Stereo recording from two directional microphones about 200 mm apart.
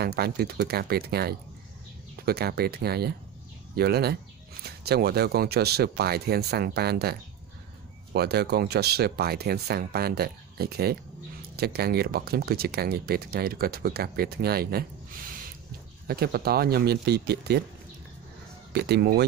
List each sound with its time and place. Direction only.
0.0 s speech: 50° right (ahead or behind)
18.7 s speech: 55° right (ahead or behind)